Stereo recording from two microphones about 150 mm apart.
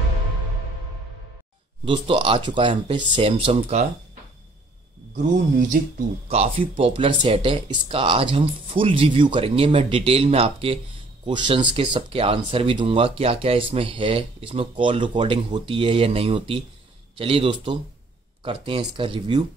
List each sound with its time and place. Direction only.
1.9 s speech: 35° right (ahead or behind)
5.1 s speech: 55° right (ahead or behind)
6.2 s speech: 40° right (ahead or behind)